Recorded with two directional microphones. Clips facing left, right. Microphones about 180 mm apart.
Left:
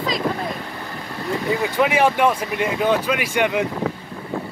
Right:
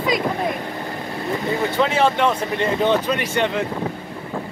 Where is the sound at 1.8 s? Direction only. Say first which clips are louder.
Left 1 dB; 15° left (ahead or behind).